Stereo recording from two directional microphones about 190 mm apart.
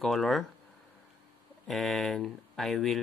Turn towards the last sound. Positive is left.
turn(degrees=0)  # may be behind; listen again after turning